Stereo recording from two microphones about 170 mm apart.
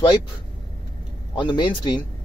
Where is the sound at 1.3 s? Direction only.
25° left (ahead or behind).